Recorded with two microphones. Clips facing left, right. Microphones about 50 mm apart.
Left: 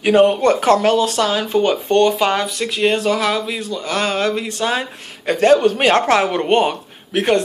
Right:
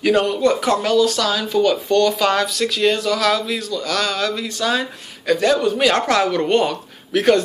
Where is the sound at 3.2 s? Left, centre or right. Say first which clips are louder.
Right 1 dB; centre.